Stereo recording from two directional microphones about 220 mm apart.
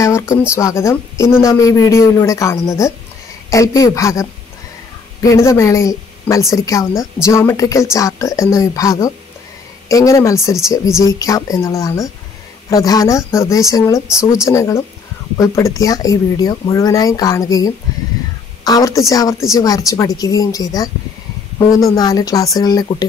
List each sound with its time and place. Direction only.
0.5 s speech: 15° left (ahead or behind)